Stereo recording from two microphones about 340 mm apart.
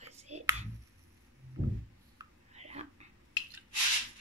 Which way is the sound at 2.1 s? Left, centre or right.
Centre.